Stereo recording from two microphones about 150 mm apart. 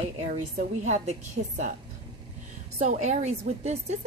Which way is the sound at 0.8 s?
50° right (ahead or behind).